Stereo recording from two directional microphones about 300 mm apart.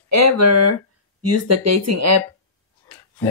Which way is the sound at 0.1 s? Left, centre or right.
Right.